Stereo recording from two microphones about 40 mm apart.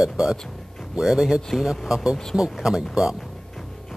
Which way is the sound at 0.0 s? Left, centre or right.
Centre.